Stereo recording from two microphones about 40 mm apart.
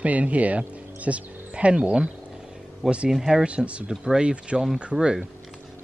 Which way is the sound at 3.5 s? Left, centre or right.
Right.